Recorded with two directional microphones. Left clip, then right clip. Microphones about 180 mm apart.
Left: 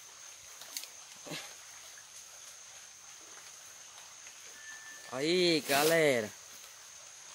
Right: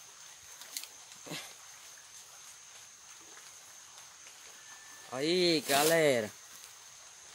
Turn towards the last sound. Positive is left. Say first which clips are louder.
# even
turn(degrees=-15)  # may be behind; listen again after turning